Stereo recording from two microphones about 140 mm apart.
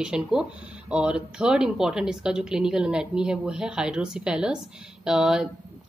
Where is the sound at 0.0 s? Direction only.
5° right (ahead or behind).